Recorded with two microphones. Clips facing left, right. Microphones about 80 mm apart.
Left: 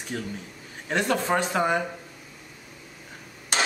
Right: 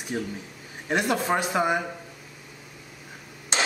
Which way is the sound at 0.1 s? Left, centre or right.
Centre.